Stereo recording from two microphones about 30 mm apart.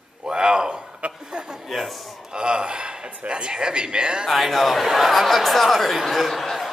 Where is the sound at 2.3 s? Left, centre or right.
Right.